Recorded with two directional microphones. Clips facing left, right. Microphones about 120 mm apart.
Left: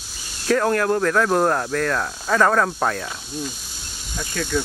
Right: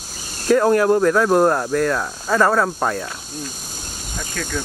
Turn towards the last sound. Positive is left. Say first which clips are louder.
# left 3 dB
turn(degrees=10)  # may be behind; listen again after turning